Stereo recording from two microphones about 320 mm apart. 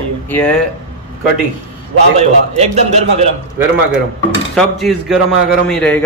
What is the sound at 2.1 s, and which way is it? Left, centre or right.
A man's voice, centre.